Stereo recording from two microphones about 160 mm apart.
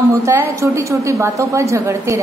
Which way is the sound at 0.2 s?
15° right (ahead or behind).